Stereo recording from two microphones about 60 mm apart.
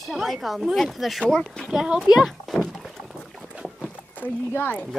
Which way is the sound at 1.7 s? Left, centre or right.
Centre.